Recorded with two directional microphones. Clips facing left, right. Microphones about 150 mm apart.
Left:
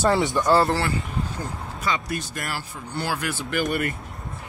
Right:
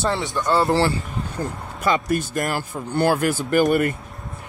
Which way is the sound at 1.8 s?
50° right (ahead or behind).